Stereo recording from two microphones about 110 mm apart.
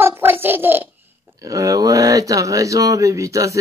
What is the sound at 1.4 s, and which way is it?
Speech, 30° right (ahead or behind).